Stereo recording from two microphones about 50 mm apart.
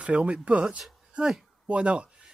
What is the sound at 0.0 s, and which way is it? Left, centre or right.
Speech, right.